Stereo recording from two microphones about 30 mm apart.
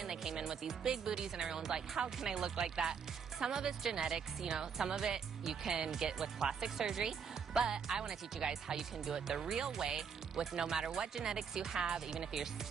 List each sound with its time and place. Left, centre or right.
0.0 s speech: centre